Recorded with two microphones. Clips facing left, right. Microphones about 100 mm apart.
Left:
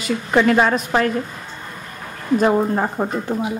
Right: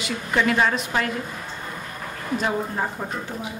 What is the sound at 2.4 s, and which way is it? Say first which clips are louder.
Speech: left 8 dB; 50° left (ahead or behind).